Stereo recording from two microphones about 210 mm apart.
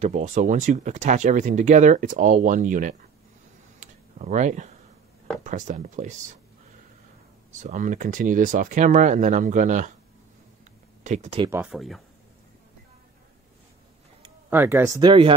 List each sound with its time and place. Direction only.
0.0 s speech: 35° right (ahead or behind)
3.8 s a sound: 35° right (ahead or behind)
5.4 s speech: 40° right (ahead or behind)
7.5 s speech: 35° right (ahead or behind)
11.1 s speech: 30° right (ahead or behind)
11.5 s speech: 5° right (ahead or behind)
14.5 s speech: 10° right (ahead or behind)